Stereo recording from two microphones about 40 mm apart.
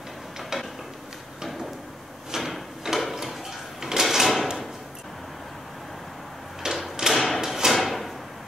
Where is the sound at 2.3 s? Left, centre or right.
Centre.